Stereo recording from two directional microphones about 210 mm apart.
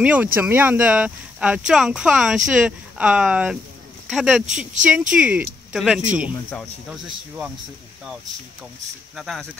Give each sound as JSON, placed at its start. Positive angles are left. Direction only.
{"t": 0.0, "sound": "speech", "side_deg": -5}
{"t": 4.5, "sound": "speech", "side_deg": -35}
{"t": 5.1, "sound": "speech", "side_deg": -5}
{"t": 9.1, "sound": "speech", "side_deg": 0}